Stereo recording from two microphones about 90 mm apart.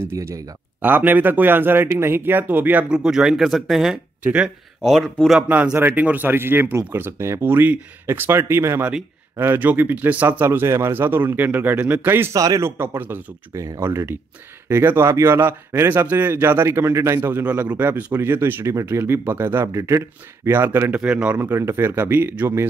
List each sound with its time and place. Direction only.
0.0 s speech: 30° right (ahead or behind); by 4.0 s 5° right (ahead or behind)
4.2 s speech: 15° right (ahead or behind)
4.8 s speech: centre (ahead or behind)
5.5 s speech: 15° right (ahead or behind)
12.4 s speech: 40° right (ahead or behind)
12.6 s speech: 25° right (ahead or behind)
13.5 s a man's voice: 35° right (ahead or behind); by 21.4 s 15° right (ahead or behind)
21.4 s speech: 25° right (ahead or behind)